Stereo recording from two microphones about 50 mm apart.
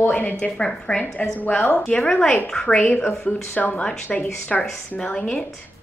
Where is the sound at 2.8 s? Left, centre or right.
Left.